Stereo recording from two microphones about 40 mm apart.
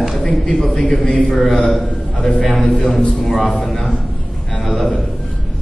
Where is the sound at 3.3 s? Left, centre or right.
Centre.